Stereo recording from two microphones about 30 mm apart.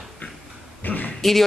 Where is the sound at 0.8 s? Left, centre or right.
Left.